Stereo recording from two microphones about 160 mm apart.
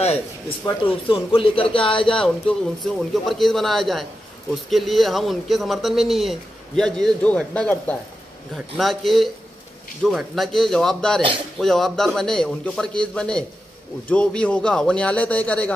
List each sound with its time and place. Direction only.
0.0 s speech: 40° left (ahead or behind)
2.0 s a man's voice: 5° left (ahead or behind)